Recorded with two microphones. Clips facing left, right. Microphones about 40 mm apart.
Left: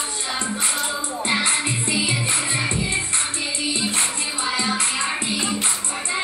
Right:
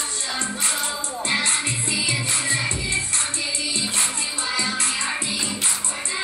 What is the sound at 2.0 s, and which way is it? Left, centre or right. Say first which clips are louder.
Music: left 1 dB; left.